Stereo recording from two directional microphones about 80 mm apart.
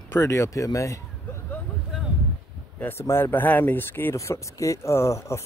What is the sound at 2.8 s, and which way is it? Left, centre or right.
Speech, left.